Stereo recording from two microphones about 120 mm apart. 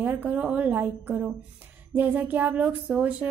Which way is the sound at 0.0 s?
15° right (ahead or behind).